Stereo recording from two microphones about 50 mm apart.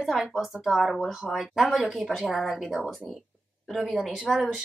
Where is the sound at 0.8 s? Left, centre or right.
Centre.